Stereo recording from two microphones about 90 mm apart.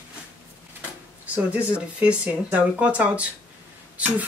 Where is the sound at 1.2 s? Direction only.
15° right (ahead or behind).